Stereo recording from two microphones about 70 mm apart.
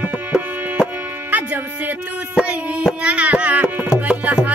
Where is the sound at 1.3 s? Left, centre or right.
Right.